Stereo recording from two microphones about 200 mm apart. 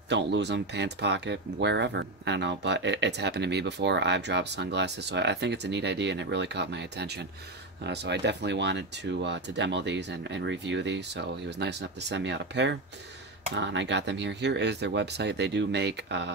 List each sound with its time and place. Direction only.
0.1 s speech: 60° right (ahead or behind)